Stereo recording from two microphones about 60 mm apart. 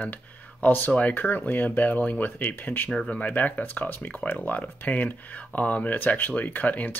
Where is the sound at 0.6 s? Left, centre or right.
Left.